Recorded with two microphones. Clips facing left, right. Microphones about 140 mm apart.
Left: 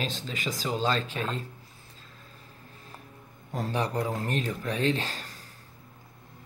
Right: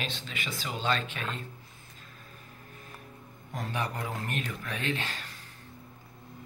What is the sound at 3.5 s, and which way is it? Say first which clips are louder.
Speech: left 5 dB; 35° left (ahead or behind).